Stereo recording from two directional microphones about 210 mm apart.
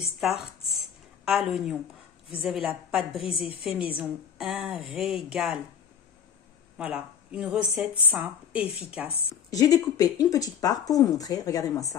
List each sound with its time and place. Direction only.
0.2 s a woman's voice: centre (ahead or behind)
6.8 s a woman's voice: 5° right (ahead or behind)
9.5 s speech: 15° left (ahead or behind)